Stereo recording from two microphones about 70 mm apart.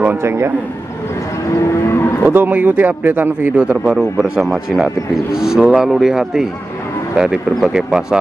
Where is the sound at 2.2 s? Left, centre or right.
Right.